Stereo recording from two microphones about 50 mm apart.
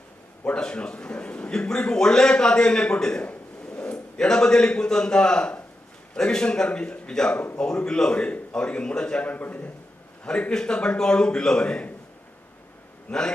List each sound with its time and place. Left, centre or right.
0.6 s a man's voice: centre
3.3 s a sound: left
3.9 s a man's voice: centre; by 9.7 s left
10.5 s a man's voice: centre